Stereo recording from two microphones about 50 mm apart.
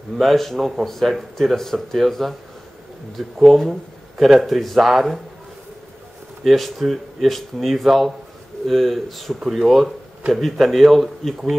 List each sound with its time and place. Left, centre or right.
0.2 s speech: centre
3.3 s speech: centre
6.4 s speech: centre